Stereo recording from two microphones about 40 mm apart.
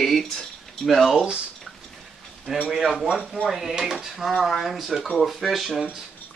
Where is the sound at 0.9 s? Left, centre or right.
Centre.